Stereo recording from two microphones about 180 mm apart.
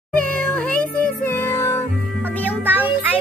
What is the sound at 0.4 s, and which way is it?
Music, 5° left (ahead or behind).